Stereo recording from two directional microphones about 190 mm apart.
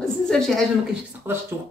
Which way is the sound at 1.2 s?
15° right (ahead or behind).